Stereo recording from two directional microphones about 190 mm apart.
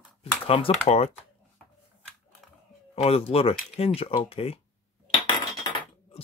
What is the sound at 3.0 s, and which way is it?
Cutlery, 30° left (ahead or behind).